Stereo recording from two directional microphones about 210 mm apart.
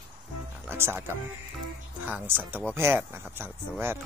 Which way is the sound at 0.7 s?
10° right (ahead or behind).